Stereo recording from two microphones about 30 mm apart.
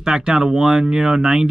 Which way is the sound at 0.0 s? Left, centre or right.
Right.